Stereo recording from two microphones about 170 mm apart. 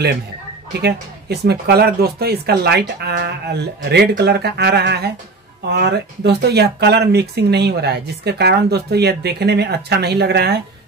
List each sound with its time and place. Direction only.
0.7 s speech: 70° right (ahead or behind)